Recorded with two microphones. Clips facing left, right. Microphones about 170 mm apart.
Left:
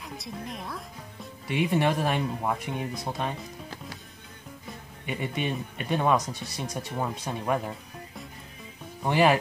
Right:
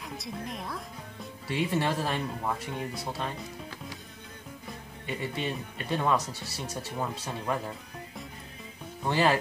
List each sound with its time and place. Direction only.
0.0 s a woman's voice: centre (ahead or behind)
1.5 s speech: 15° left (ahead or behind)
5.0 s speech: 15° left (ahead or behind)
9.0 s speech: 15° left (ahead or behind)